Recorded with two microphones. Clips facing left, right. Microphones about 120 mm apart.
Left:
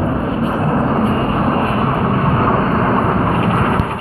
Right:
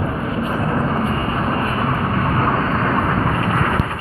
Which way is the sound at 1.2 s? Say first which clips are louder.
Left 5 dB; 50° left (ahead or behind).